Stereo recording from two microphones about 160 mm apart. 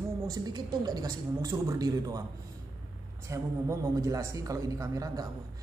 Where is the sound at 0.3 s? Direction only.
25° right (ahead or behind).